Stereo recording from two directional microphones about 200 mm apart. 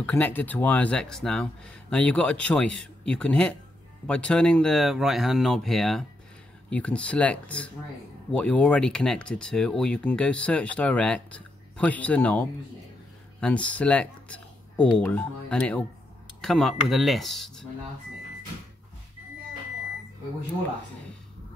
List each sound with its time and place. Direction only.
0.0 s speech: 10° left (ahead or behind)